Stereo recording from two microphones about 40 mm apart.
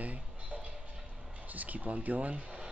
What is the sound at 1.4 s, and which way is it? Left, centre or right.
Speech, right.